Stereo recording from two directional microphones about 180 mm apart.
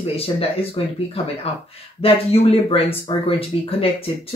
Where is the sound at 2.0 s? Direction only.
30° left (ahead or behind).